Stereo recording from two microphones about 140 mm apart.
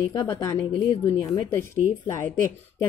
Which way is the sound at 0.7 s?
35° left (ahead or behind).